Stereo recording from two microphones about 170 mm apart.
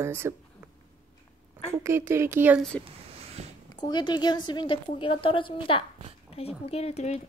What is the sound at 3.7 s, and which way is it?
A woman's voice, 25° left (ahead or behind).